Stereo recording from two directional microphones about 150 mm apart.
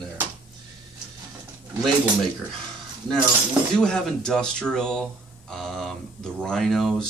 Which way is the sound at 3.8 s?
5° left (ahead or behind).